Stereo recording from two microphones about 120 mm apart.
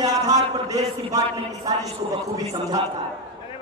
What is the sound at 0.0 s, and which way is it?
A man's voice, 30° right (ahead or behind).